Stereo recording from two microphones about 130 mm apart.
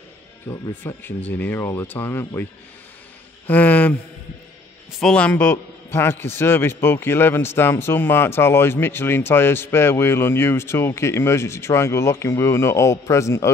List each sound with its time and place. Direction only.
0.5 s speech: 20° left (ahead or behind)
3.4 s speech: 10° left (ahead or behind)
5.0 s a man's voice: 10° left (ahead or behind)